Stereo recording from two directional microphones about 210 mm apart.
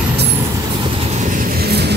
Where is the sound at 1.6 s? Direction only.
50° right (ahead or behind).